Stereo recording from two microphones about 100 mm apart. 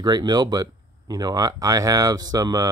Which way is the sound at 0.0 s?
45° right (ahead or behind).